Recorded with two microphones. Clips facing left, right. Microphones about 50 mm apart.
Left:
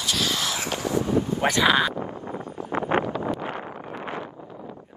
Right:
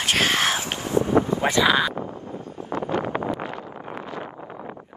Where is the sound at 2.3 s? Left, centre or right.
Left.